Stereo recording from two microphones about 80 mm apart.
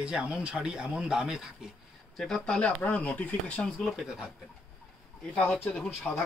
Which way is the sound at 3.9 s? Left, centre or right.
Centre.